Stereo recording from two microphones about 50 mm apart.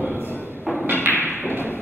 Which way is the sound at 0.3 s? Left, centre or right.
Right.